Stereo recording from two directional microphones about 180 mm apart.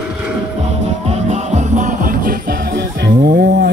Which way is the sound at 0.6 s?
35° right (ahead or behind).